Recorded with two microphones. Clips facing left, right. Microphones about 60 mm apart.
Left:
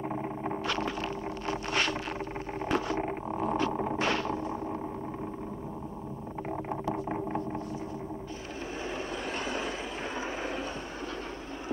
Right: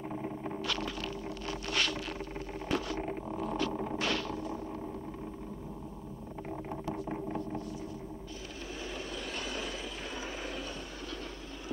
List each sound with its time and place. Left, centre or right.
0.1 s a sound: left
6.5 s boat: left
8.9 s vehicle: left